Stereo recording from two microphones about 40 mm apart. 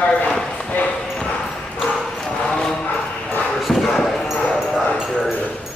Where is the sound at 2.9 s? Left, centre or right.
Left.